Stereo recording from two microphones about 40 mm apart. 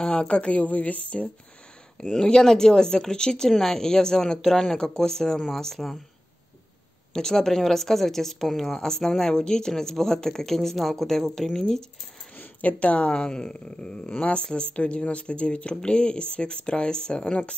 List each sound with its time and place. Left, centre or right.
0.1 s a woman's voice: left
2.0 s speech: centre
3.4 s speech: centre
7.2 s speech: centre
12.8 s speech: left